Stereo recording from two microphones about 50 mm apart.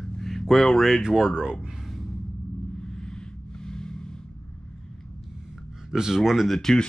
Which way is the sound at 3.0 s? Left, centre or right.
Centre.